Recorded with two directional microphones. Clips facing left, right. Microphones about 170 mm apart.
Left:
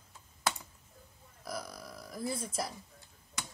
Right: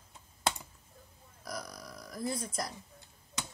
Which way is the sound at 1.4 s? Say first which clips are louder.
Left 1 dB; 5° left (ahead or behind).